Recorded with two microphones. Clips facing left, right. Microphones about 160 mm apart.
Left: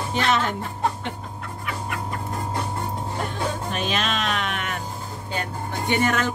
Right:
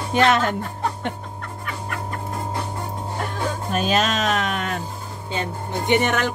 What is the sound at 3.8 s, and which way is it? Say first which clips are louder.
Music: right 7 dB; 40° right (ahead or behind).